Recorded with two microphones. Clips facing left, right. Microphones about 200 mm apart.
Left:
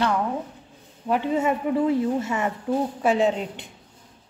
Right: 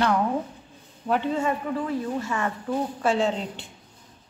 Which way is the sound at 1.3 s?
20° left (ahead or behind).